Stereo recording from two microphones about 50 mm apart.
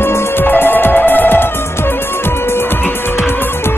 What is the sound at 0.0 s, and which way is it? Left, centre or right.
Music, left.